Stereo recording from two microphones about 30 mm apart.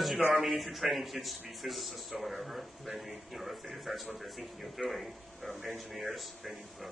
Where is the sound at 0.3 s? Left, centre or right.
Centre.